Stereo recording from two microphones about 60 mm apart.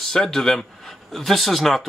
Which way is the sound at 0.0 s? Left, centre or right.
Centre.